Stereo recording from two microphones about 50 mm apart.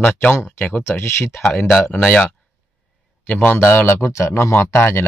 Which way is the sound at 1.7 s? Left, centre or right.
Centre.